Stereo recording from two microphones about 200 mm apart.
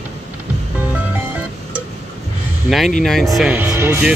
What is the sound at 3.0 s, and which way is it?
Speech, centre (ahead or behind).